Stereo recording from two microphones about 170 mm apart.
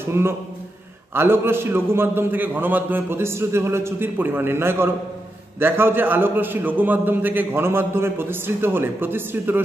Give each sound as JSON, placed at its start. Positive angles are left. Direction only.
{"t": 0.2, "sound": "a man's voice", "side_deg": -15}